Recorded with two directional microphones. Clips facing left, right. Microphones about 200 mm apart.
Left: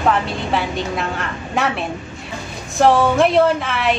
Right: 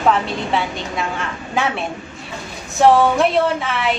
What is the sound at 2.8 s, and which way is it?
A woman's voice, centre (ahead or behind).